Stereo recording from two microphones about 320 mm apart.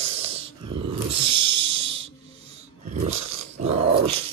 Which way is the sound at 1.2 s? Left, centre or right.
Right.